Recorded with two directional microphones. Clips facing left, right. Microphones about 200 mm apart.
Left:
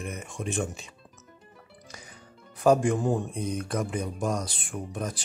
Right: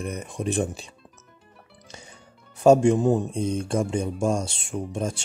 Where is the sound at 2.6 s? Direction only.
25° right (ahead or behind).